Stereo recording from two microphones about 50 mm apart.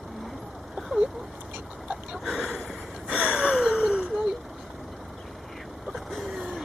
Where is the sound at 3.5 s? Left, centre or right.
Centre.